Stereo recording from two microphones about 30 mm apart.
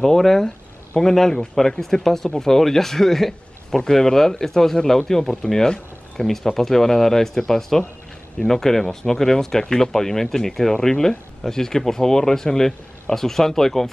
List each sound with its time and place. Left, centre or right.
0.0 s speech: centre